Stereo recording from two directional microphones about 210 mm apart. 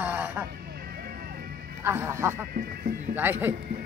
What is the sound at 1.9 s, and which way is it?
Speech, 10° right (ahead or behind).